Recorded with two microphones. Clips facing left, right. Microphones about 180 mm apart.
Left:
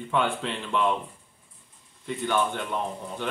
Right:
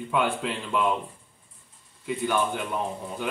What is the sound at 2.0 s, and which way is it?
A man's voice, 5° right (ahead or behind).